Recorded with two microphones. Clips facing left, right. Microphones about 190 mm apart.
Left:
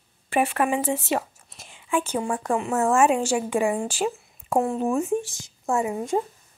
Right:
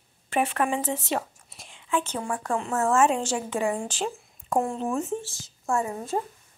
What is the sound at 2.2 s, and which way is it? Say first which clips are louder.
A woman's voice: left 3 dB; 20° left (ahead or behind).